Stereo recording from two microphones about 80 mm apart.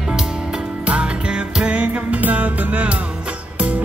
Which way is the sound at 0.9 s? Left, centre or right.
Centre.